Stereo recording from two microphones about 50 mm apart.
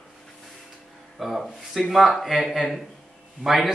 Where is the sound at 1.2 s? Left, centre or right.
Centre.